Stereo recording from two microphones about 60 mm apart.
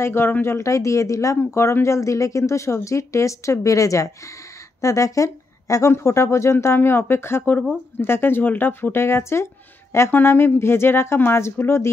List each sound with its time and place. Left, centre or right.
0.0 s speech: left
5.9 s speech: left